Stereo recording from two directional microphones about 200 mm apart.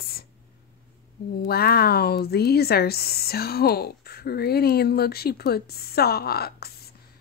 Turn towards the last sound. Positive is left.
turn(degrees=50)  # may be behind; listen again after turning